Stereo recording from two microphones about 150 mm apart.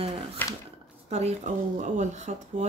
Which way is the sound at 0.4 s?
10° left (ahead or behind).